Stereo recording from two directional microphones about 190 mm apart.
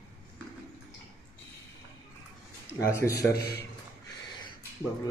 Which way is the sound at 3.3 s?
55° left (ahead or behind).